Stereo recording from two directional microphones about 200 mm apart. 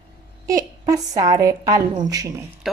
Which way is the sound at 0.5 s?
15° right (ahead or behind).